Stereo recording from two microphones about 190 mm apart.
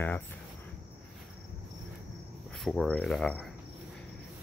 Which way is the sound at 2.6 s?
Centre (ahead or behind).